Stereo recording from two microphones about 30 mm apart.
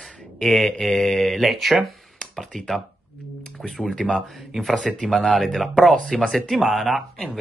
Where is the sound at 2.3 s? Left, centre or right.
Centre.